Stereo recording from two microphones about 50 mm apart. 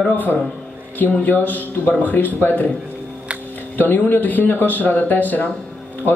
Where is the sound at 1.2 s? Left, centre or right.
Left.